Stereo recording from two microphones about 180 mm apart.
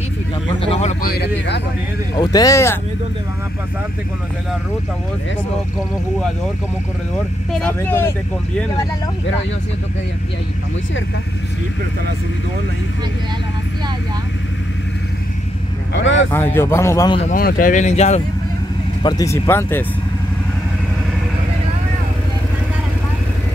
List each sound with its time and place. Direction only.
0.6 s speech: 35° left (ahead or behind)
1.0 s speech: 65° left (ahead or behind)
2.1 s speech: 20° left (ahead or behind)
7.5 s a man's voice: 10° left (ahead or behind)
15.9 s speech: 90° left
16.3 s a man's voice: 10° left (ahead or behind)
17.3 s speech: 50° left (ahead or behind)
19.0 s a man's voice: 20° left (ahead or behind)